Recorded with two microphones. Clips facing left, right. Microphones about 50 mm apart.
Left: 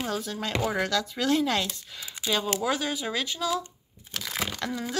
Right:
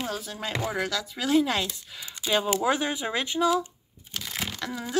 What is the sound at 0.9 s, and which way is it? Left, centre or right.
Speech, centre.